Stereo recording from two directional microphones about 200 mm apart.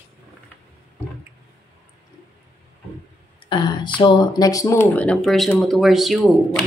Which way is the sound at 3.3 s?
25° left (ahead or behind).